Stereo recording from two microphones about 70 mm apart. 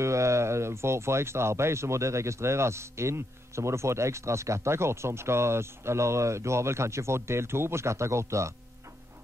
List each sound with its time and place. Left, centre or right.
0.0 s speech: right